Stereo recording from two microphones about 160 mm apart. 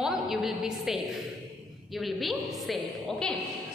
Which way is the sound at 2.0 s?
Centre (ahead or behind).